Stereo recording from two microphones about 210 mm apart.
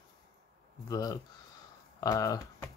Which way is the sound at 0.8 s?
15° left (ahead or behind).